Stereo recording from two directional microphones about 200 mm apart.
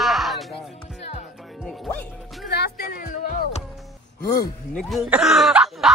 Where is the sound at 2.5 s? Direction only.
50° left (ahead or behind).